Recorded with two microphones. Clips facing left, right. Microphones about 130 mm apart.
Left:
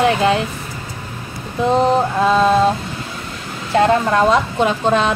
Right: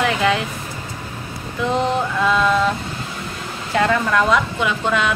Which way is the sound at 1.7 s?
35° left (ahead or behind).